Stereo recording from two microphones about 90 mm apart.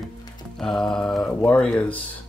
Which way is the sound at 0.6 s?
5° left (ahead or behind).